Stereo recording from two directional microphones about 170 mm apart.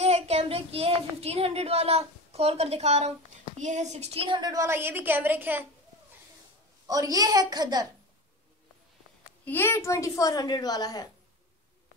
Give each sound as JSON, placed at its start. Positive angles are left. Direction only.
{"t": 0.0, "sound": "a child's voice", "side_deg": -40}
{"t": 6.9, "sound": "a woman's voice", "side_deg": -20}
{"t": 9.4, "sound": "a woman's voice", "side_deg": 10}